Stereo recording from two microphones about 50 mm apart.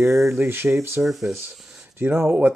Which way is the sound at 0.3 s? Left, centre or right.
Right.